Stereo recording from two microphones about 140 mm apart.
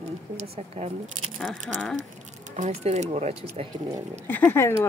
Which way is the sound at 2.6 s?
50° right (ahead or behind).